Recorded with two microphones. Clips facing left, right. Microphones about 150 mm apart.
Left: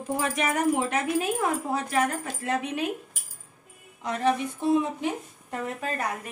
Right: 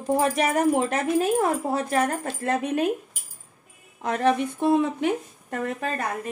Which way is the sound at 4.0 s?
60° right (ahead or behind).